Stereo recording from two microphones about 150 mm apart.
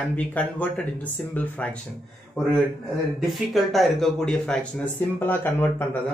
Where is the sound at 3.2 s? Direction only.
Centre (ahead or behind).